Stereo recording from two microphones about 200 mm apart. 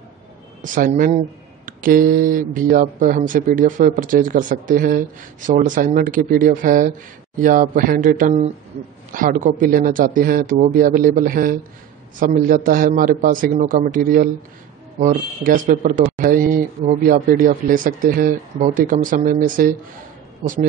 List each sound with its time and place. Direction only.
0.6 s speech: 45° right (ahead or behind)